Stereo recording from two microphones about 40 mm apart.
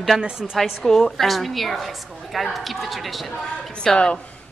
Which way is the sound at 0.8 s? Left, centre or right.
Centre.